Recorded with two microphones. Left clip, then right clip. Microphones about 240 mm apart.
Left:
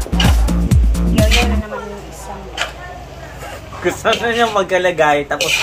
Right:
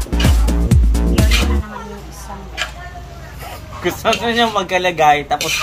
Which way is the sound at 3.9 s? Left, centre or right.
Right.